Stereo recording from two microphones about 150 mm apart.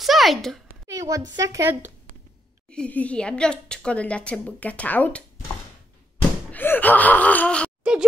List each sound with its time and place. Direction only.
0.0 s a sound: centre (ahead or behind)
0.8 s a woman's voice: 20° right (ahead or behind)
2.7 s a woman's voice: 10° left (ahead or behind)
6.5 s gasp: 10° left (ahead or behind)